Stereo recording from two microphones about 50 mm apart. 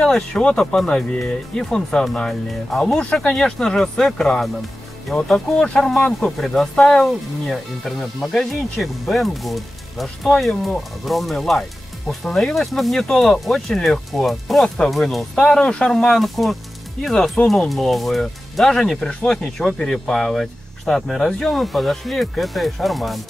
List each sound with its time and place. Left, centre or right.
0.0 s speech: centre
3.3 s speech: centre
5.6 s speech: centre
6.4 s speech: centre
8.8 s speech: centre
15.6 s speech: centre